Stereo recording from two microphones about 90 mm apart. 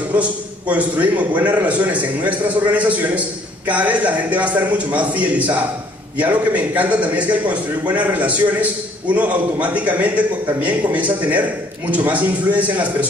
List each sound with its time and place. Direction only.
0.1 s a man's voice: 15° right (ahead or behind)